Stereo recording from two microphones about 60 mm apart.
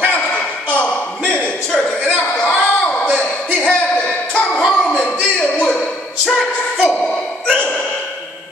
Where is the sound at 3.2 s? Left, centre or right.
Centre.